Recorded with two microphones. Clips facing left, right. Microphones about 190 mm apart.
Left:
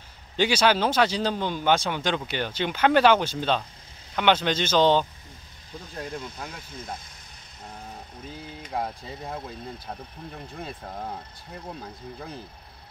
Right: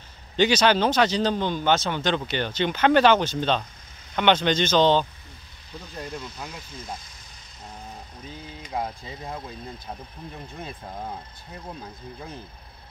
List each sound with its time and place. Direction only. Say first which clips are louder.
0.4 s speech: right 2 dB; 10° left (ahead or behind)
6.5 s speech: even; 55° left (ahead or behind)
8.3 s speech: even; 5° left (ahead or behind)